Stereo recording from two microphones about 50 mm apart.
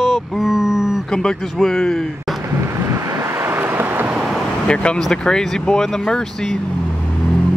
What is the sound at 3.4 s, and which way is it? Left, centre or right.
Vehicle, right.